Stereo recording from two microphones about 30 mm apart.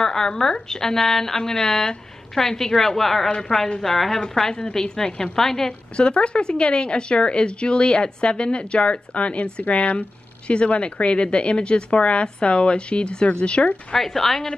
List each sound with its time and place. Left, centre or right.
0.0 s a woman's voice: left
5.7 s speech: left
13.9 s speech: centre